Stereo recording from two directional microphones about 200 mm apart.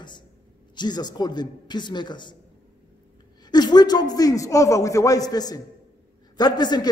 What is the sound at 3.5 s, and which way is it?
A man's voice, 20° left (ahead or behind).